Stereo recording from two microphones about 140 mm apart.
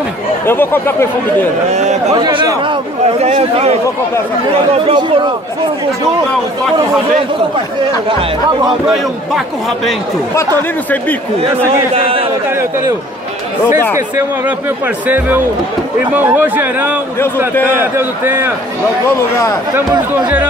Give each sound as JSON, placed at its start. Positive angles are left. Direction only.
{"t": 0.5, "sound": "speech", "side_deg": 15}
{"t": 1.7, "sound": "a man's voice", "side_deg": -55}
{"t": 2.1, "sound": "speech", "side_deg": -30}
{"t": 3.2, "sound": "a man's voice", "side_deg": -55}
{"t": 4.7, "sound": "a man's voice", "side_deg": -45}
{"t": 8.8, "sound": "a man's voice", "side_deg": 0}
{"t": 11.4, "sound": "a man's voice", "side_deg": -45}
{"t": 12.4, "sound": "a man's voice", "side_deg": -15}
{"t": 13.9, "sound": "a man's voice", "side_deg": -20}